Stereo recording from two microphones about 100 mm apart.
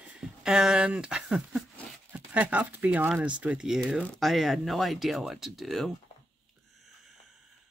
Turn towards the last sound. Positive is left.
turn(degrees=0)  # may be behind; listen again after turning